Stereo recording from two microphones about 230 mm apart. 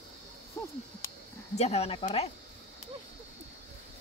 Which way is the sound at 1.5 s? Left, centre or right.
Left.